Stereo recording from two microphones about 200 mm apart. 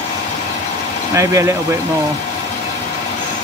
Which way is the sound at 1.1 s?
15° right (ahead or behind).